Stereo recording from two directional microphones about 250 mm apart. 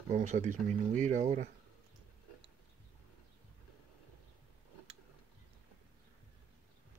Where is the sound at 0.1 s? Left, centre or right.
Right.